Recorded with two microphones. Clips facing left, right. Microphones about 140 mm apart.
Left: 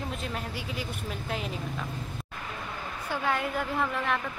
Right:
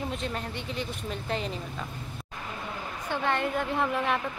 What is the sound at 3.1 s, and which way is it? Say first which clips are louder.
Speech: right 2 dB; 5° left (ahead or behind).